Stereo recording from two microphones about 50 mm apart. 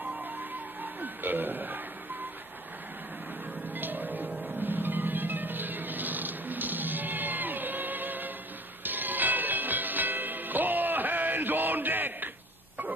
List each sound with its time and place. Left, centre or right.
0.0 s music: right
1.0 s speech: right
3.7 s music: right